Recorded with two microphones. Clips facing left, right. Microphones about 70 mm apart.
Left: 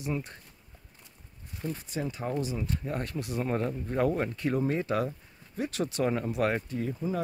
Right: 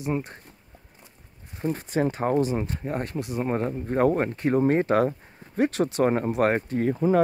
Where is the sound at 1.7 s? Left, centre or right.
Right.